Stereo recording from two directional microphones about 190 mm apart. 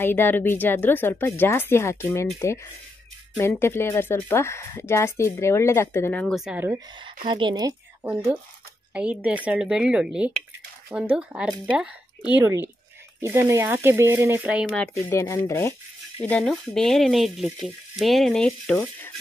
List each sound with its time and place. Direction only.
0.0 s speech: 10° left (ahead or behind)
6.7 s speech: 25° right (ahead or behind)
8.0 s speech: 10° right (ahead or behind)
13.2 s speech: 15° right (ahead or behind)
15.0 s speech: 15° left (ahead or behind)